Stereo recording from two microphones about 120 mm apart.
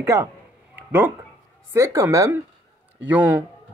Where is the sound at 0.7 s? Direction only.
15° right (ahead or behind).